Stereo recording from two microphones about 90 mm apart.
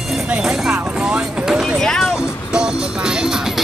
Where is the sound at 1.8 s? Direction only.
5° left (ahead or behind).